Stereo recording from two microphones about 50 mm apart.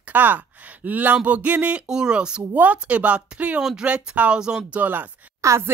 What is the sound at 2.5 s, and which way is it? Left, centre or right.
Speech, right.